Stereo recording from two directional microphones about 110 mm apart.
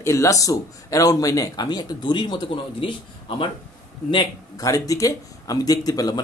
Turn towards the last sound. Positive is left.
turn(degrees=35)  # may be behind; listen again after turning